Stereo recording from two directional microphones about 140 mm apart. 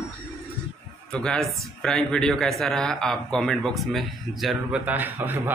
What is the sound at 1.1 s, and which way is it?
Speech, 5° left (ahead or behind).